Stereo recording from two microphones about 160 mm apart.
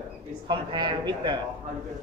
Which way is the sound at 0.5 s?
30° right (ahead or behind).